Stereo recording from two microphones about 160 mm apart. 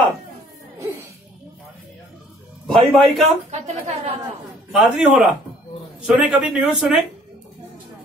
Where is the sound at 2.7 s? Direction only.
Centre (ahead or behind).